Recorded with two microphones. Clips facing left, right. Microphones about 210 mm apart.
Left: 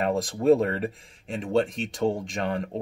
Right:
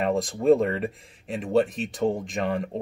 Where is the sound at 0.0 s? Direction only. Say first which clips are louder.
Even; centre (ahead or behind).